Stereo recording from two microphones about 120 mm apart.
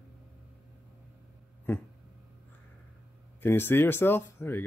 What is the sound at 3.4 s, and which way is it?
Speech, 20° left (ahead or behind).